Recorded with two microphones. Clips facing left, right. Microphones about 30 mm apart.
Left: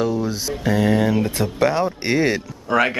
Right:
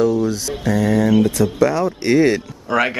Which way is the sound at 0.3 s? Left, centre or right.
Left.